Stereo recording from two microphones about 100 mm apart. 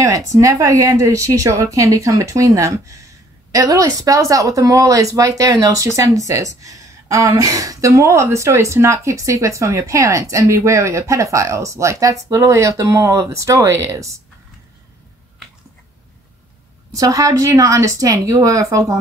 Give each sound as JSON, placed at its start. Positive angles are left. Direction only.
{"t": 0.3, "sound": "speech", "side_deg": -30}
{"t": 16.9, "sound": "speech", "side_deg": -35}